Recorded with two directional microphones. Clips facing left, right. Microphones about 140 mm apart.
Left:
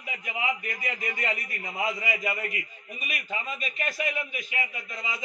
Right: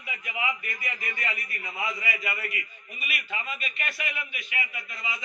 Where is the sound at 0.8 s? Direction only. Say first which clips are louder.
Left 4 dB; 40° left (ahead or behind).